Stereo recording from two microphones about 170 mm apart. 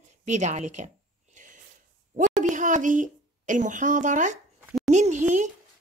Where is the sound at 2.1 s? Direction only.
45° right (ahead or behind).